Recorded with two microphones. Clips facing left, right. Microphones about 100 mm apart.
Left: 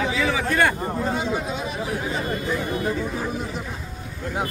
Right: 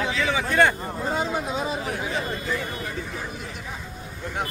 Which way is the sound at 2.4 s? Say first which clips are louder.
Left 4 dB; 20° left (ahead or behind).